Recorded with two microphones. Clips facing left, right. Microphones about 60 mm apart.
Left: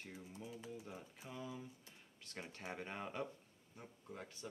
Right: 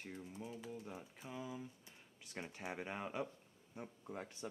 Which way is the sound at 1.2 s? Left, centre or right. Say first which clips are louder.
Right 2 dB; centre.